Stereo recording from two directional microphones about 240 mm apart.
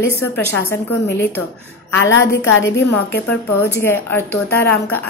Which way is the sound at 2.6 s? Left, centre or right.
Centre.